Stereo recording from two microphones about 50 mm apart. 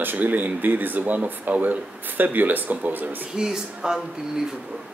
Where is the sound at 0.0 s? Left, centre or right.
Right.